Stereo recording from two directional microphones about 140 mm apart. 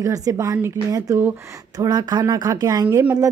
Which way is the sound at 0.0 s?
25° right (ahead or behind).